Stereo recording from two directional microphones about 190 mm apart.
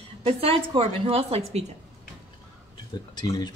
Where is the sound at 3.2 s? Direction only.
20° left (ahead or behind).